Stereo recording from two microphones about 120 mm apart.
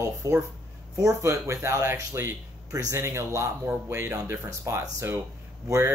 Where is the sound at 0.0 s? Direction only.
20° right (ahead or behind).